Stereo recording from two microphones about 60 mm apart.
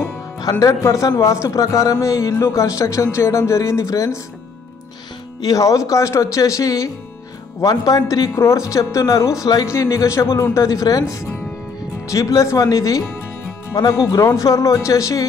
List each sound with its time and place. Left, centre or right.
0.5 s speech: left
1.5 s speech: left
5.4 s speech: left
7.6 s speech: left
8.3 s speech: left
9.7 s speech: left